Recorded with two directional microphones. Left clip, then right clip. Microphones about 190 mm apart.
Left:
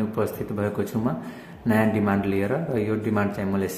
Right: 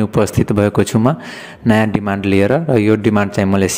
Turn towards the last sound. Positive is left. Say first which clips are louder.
# right 11 dB
turn(degrees=-50)  # may be behind; listen again after turning